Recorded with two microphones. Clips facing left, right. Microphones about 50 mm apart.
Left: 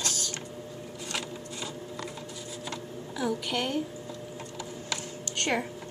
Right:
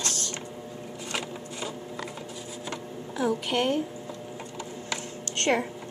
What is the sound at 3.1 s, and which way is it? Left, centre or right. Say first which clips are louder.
Speech: right 4 dB; right.